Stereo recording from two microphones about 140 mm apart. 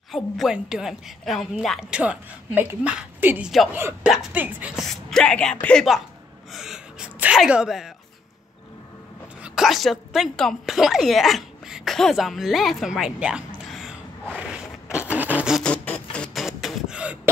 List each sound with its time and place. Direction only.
0.1 s a woman's voice: centre (ahead or behind)
4.1 s a woman's voice: 5° right (ahead or behind)
5.1 s a woman's voice: 5° left (ahead or behind)
9.4 s a sound: centre (ahead or behind)
15.6 s printer: 10° left (ahead or behind)
16.4 s beatboxing: 5° right (ahead or behind)